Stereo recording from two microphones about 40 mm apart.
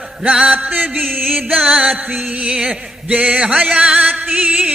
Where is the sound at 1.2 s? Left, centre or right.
Centre.